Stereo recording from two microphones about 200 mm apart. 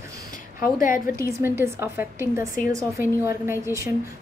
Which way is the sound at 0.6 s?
40° left (ahead or behind).